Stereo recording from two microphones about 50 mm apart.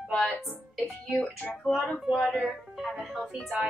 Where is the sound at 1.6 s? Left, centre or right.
Centre.